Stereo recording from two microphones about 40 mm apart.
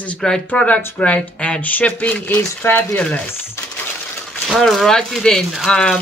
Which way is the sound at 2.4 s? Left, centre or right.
Left.